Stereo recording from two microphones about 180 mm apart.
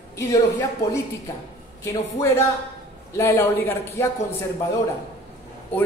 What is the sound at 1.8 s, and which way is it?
A man's voice, 15° left (ahead or behind).